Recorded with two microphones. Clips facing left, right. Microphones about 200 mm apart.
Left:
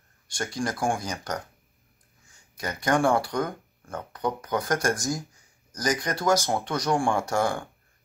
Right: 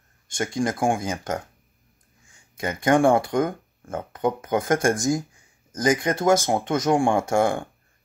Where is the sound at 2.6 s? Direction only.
25° right (ahead or behind).